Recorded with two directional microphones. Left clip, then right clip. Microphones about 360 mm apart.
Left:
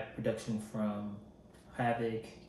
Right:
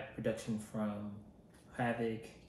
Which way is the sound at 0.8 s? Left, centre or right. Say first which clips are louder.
Left 3 dB; centre.